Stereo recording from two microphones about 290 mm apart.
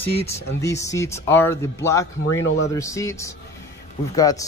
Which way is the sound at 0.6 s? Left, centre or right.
Centre.